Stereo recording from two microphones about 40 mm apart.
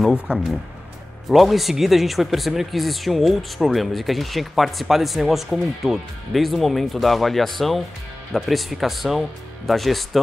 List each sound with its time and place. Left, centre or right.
0.1 s speech: right
1.3 s speech: centre